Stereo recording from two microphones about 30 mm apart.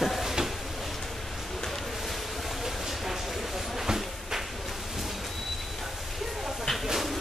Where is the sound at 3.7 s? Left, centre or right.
Centre.